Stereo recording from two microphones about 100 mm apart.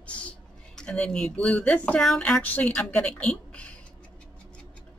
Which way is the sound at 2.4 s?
15° left (ahead or behind).